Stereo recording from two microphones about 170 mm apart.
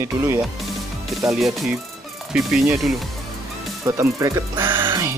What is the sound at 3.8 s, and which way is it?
Speech, 15° right (ahead or behind).